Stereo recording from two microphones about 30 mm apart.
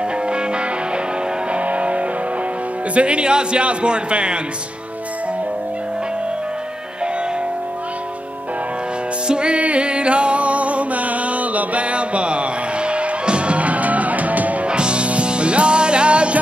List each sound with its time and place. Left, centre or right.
0.3 s music: right
1.5 s music: right
2.9 s speech: right
9.3 s music: right
14.7 s music: right